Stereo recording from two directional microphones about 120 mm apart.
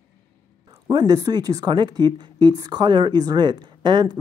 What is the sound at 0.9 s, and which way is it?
A woman's voice, 35° right (ahead or behind).